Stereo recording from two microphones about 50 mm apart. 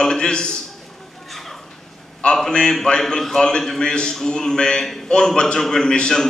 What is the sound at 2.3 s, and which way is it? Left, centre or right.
A man's voice, centre.